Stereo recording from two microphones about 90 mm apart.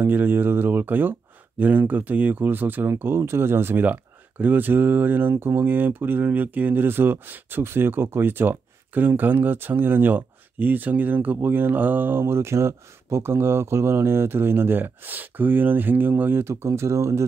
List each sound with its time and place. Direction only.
0.0 s speech: 25° right (ahead or behind)